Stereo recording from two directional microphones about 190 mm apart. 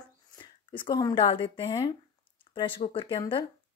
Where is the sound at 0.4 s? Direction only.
25° left (ahead or behind).